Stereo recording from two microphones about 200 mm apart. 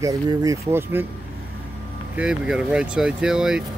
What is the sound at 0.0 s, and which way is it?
Speech, 15° right (ahead or behind).